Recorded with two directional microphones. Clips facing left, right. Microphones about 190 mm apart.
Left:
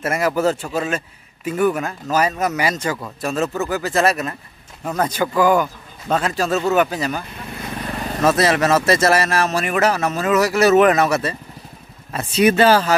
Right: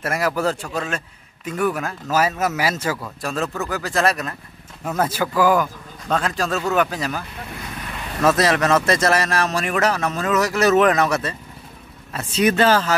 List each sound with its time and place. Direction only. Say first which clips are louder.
0.0 s a man's voice: left 3 dB; centre (ahead or behind)
7.8 s vehicle: left 6 dB; 40° left (ahead or behind)
8.2 s a man's voice: left 1 dB; centre (ahead or behind)